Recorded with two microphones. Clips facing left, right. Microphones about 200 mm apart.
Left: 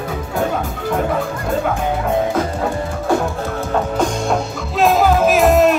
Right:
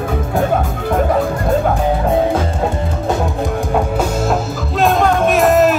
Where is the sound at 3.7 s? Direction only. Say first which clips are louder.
Left 1 dB; 5° right (ahead or behind).